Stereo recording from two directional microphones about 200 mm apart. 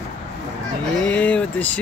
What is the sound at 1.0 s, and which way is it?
Speech, 5° left (ahead or behind).